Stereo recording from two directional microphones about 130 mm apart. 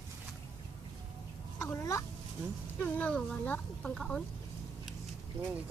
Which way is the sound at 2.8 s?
10° left (ahead or behind).